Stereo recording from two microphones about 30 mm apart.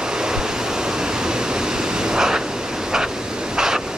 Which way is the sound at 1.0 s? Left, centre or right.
Right.